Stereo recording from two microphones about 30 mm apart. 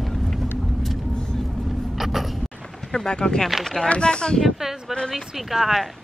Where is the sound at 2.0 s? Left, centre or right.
Centre.